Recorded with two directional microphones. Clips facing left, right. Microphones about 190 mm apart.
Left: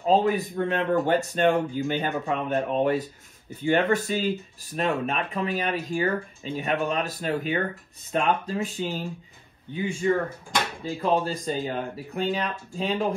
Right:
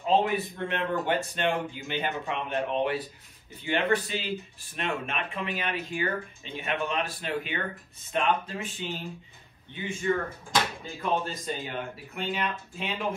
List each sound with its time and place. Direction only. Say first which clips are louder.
0.0 s speech: left 3 dB; 40° left (ahead or behind)
11.0 s speech: left 5 dB; 35° left (ahead or behind)